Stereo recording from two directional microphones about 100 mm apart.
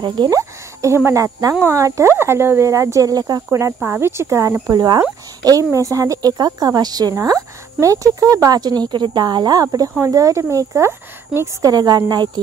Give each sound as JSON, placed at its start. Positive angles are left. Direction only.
{"t": 0.0, "sound": "speech", "side_deg": -50}
{"t": 0.3, "sound": "speech", "side_deg": -35}
{"t": 11.6, "sound": "speech", "side_deg": -40}